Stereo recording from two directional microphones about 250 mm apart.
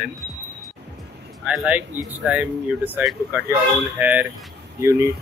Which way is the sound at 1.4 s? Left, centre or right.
Centre.